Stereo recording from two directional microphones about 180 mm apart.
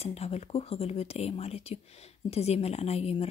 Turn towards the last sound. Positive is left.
turn(degrees=35)  # may be behind; listen again after turning